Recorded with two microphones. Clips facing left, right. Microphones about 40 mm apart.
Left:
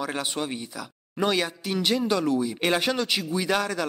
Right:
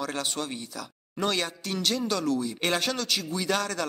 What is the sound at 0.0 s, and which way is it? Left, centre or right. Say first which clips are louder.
A man's voice: left 2 dB; centre.